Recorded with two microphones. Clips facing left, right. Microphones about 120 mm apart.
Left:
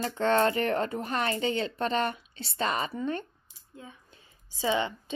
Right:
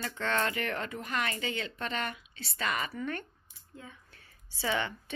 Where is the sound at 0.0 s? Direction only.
35° left (ahead or behind).